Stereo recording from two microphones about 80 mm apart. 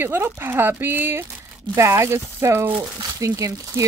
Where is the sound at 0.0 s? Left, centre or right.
Right.